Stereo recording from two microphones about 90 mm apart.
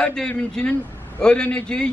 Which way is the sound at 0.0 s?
10° left (ahead or behind).